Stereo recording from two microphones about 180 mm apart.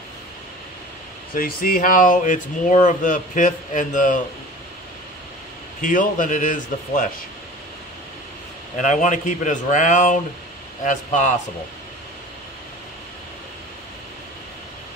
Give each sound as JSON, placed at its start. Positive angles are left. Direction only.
{"t": 1.3, "sound": "speech", "side_deg": 55}
{"t": 5.8, "sound": "speech", "side_deg": 45}
{"t": 8.7, "sound": "speech", "side_deg": 45}